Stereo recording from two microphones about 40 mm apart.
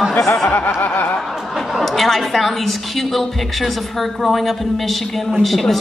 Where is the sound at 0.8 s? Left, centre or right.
Left.